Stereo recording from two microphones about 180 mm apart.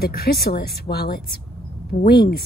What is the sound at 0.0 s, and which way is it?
Speech, 60° left (ahead or behind).